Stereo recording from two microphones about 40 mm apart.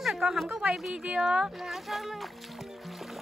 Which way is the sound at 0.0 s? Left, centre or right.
Centre.